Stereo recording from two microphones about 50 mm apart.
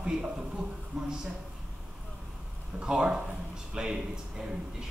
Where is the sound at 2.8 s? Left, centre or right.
Centre.